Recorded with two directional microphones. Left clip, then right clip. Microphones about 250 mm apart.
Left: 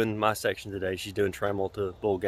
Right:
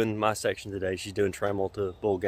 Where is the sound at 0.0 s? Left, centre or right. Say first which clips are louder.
Even; centre.